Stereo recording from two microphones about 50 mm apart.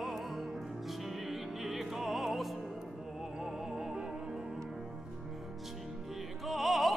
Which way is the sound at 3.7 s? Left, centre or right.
Centre.